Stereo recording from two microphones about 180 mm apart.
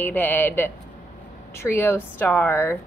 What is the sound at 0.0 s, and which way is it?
A woman's voice, 10° left (ahead or behind).